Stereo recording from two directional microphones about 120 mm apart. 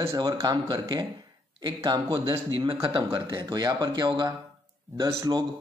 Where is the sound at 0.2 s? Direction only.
30° right (ahead or behind).